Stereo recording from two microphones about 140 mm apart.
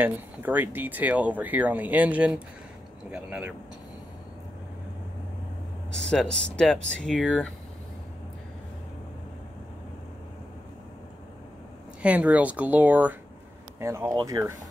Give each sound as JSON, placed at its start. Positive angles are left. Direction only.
{"t": 0.0, "sound": "speech", "side_deg": -15}
{"t": 5.9, "sound": "speech", "side_deg": 5}
{"t": 12.0, "sound": "speech", "side_deg": -10}